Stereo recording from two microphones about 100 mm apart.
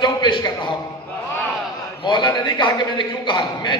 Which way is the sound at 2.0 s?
50° left (ahead or behind).